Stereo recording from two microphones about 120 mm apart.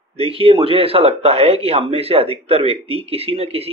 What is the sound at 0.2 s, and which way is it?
Speech, 50° right (ahead or behind).